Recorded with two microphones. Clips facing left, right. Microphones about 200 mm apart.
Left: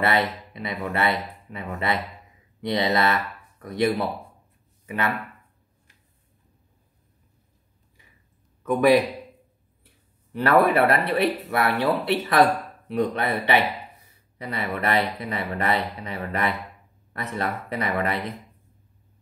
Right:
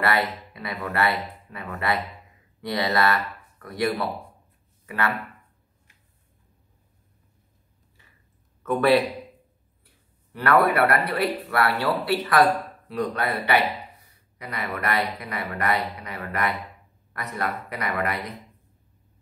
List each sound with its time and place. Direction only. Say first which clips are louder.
0.0 s speech: left 1 dB; 20° left (ahead or behind)
8.6 s a man's voice: left 2 dB; 15° left (ahead or behind)
10.3 s speech: left 2 dB; 25° left (ahead or behind)